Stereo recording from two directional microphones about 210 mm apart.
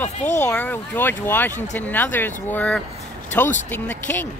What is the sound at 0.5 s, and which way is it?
A woman's voice, 5° left (ahead or behind).